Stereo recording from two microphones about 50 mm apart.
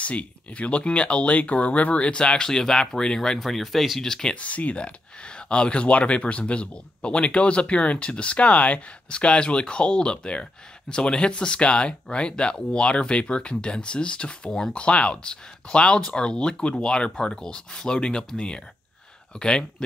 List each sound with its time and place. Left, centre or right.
0.0 s speech: left
3.3 s speech: centre
4.4 s speech: left